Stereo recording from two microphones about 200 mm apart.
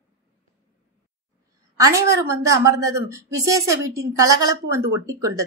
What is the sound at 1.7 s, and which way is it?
A woman's voice, 15° right (ahead or behind).